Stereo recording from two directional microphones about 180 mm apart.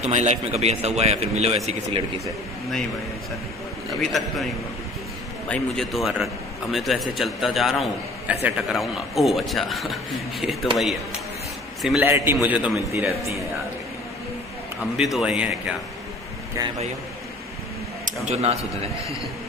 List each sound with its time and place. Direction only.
0.0 s a man's voice: 40° right (ahead or behind)
4.0 s a man's voice: centre (ahead or behind)
5.5 s a man's voice: centre (ahead or behind)
11.8 s a man's voice: centre (ahead or behind)
14.8 s a man's voice: centre (ahead or behind)
18.2 s a man's voice: 35° right (ahead or behind)